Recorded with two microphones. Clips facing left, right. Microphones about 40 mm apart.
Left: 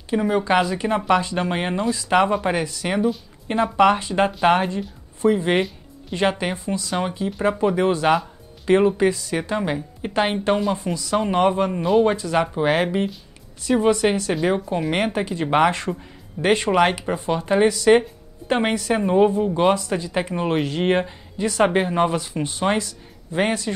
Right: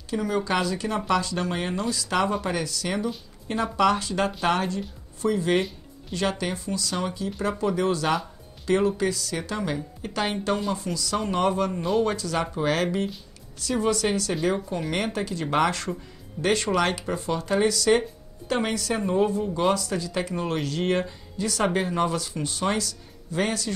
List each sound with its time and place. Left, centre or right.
0.1 s speech: left